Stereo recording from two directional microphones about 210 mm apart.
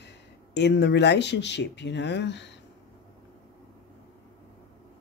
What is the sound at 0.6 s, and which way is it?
Speech, 55° left (ahead or behind).